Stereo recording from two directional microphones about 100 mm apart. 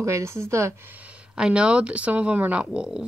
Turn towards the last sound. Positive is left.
turn(degrees=-10)  # may be behind; listen again after turning